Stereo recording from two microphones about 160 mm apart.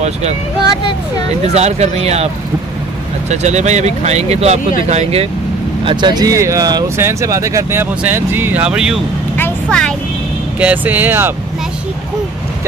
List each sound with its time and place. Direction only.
1.4 s speech: 45° right (ahead or behind)
3.3 s speech: 45° right (ahead or behind)
5.9 s speech: 30° right (ahead or behind); by 9.0 s 5° right (ahead or behind)
9.4 s vehicle: 5° left (ahead or behind)
10.6 s speech: 10° right (ahead or behind)